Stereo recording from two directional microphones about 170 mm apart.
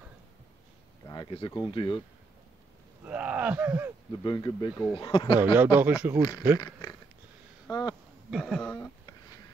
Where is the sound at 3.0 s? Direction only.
10° right (ahead or behind).